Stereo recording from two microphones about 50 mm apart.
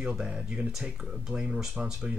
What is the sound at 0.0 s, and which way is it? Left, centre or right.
Speech, centre.